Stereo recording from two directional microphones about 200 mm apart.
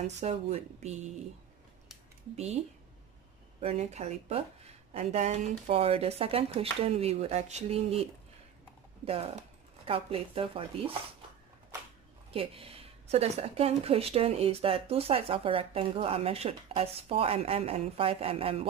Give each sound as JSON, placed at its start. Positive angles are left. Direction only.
{"t": 0.0, "sound": "a woman's voice", "side_deg": -35}
{"t": 2.3, "sound": "a woman's voice", "side_deg": -35}
{"t": 3.6, "sound": "a woman's voice", "side_deg": -35}
{"t": 12.3, "sound": "speech", "side_deg": -30}